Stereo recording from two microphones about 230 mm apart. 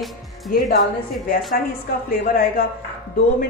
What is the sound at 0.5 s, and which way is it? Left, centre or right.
Speech, left.